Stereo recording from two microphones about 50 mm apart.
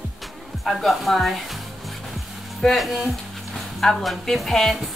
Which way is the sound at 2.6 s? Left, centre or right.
Centre.